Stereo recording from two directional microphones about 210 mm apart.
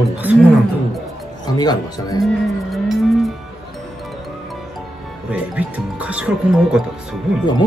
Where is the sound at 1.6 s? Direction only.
20° left (ahead or behind).